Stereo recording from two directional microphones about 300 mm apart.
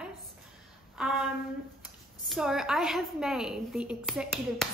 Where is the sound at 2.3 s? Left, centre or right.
Centre.